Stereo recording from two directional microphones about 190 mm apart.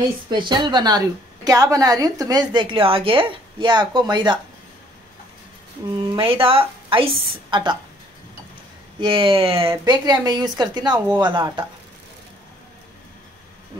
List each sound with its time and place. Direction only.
0.3 s a woman's voice: 25° right (ahead or behind)
6.1 s a woman's voice: 30° right (ahead or behind)
9.0 s a woman's voice: 25° right (ahead or behind)